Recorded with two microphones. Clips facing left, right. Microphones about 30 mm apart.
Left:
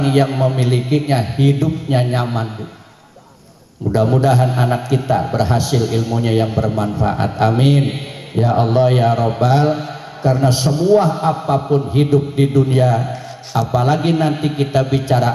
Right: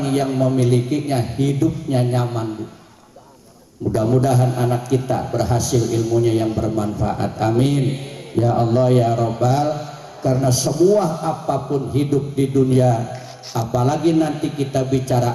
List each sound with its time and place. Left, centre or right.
0.0 s a man's voice: left
3.9 s a man's voice: left